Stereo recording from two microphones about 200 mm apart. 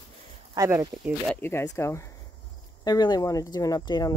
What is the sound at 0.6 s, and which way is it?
Speech, 15° right (ahead or behind).